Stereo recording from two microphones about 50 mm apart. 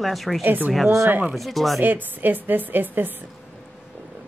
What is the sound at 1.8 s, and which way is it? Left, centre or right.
A woman's voice, right.